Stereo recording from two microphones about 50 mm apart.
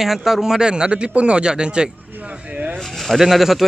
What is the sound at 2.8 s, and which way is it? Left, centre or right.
Speech, centre.